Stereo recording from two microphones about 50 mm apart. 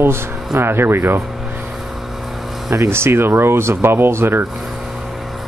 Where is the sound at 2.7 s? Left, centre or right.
Right.